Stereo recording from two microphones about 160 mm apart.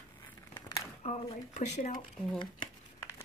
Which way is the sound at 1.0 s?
45° left (ahead or behind).